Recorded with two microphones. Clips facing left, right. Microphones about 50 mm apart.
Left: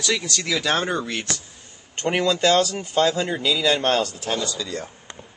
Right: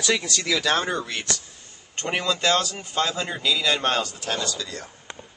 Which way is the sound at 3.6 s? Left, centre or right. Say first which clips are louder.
Left 5 dB; centre.